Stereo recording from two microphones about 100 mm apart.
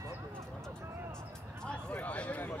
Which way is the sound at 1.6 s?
15° left (ahead or behind).